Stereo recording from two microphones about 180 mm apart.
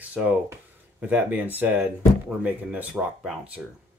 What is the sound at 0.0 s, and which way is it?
Speech, 10° right (ahead or behind).